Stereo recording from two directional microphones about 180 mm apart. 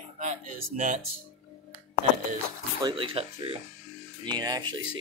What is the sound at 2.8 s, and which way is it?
Speech, 25° right (ahead or behind).